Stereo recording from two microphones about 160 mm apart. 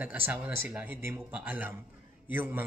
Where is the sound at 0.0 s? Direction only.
10° right (ahead or behind).